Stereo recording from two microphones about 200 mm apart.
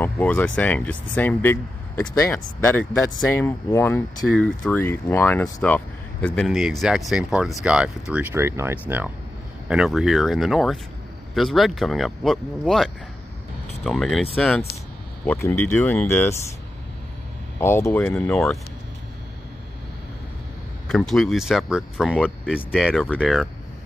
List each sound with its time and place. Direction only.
0.0 s speech: 10° left (ahead or behind)
17.6 s speech: 10° left (ahead or behind)
20.9 s speech: centre (ahead or behind)